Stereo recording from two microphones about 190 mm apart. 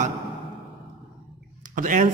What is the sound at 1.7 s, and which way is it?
Speech, 45° right (ahead or behind).